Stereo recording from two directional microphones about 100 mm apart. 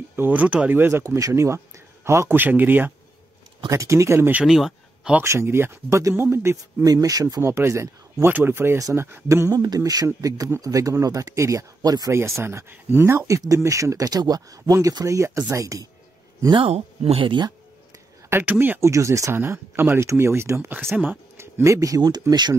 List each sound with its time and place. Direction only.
0.1 s speech: 20° right (ahead or behind)
3.6 s speech: 30° right (ahead or behind)
4.3 s speech: 10° right (ahead or behind)
4.6 s a sound: 5° right (ahead or behind)
5.2 s speech: 30° right (ahead or behind)
7.4 s speech: 30° right (ahead or behind)
9.6 s speech: 40° right (ahead or behind)
12.1 s speech: 30° right (ahead or behind)
16.5 s speech: 75° right (ahead or behind); by 17.5 s 55° right (ahead or behind)
18.3 s speech: 20° right (ahead or behind)
18.8 s speech: 30° right (ahead or behind); by 22.6 s 45° right (ahead or behind)